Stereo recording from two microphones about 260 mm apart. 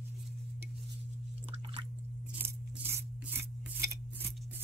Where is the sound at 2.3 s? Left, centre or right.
Centre.